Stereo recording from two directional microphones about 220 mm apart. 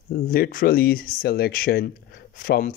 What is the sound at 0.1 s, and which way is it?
Speech, 45° left (ahead or behind).